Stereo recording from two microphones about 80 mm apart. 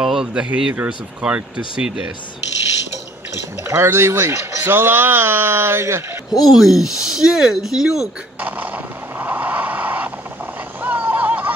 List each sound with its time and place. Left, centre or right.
0.0 s speech: centre
3.6 s speech: right
6.4 s speech: centre
8.4 s a sound: right
10.8 s vehicle: right